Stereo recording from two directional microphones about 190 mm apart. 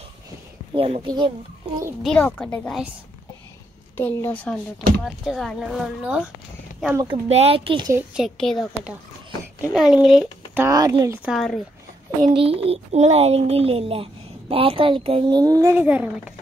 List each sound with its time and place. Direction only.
0.7 s a child's voice: 30° right (ahead or behind)
2.0 s speech: 5° left (ahead or behind)
3.9 s a woman's voice: 10° left (ahead or behind)
5.0 s speech: centre (ahead or behind)
7.0 s a child's voice: 30° right (ahead or behind)
7.9 s speech: 5° right (ahead or behind)
10.6 s a child's voice: 20° right (ahead or behind)
11.2 s speech: centre (ahead or behind)
12.4 s a child's voice: 30° right (ahead or behind); by 16.1 s 10° right (ahead or behind)